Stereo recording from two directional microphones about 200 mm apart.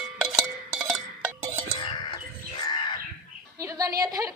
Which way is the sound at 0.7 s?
Centre (ahead or behind).